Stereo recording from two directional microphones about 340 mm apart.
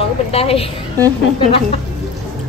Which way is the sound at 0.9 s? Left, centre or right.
Centre.